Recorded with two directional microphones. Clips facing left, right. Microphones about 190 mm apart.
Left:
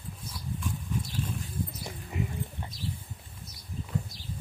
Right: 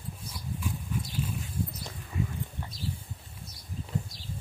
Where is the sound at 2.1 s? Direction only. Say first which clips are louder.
Even; 20° left (ahead or behind).